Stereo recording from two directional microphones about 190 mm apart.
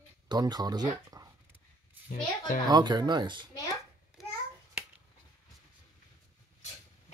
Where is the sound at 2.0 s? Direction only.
45° left (ahead or behind).